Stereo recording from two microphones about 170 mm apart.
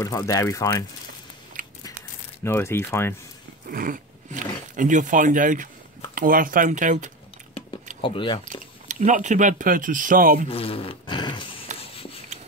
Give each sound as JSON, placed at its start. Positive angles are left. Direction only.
{"t": 0.0, "sound": "speech", "side_deg": 20}
{"t": 1.6, "sound": "a sound", "side_deg": -55}
{"t": 2.4, "sound": "speech", "side_deg": 15}
{"t": 3.6, "sound": "speech", "side_deg": -55}
{"t": 8.0, "sound": "speech", "side_deg": 30}
{"t": 8.5, "sound": "speech", "side_deg": -45}
{"t": 10.5, "sound": "fart", "side_deg": 35}
{"t": 11.8, "sound": "a sound", "side_deg": 35}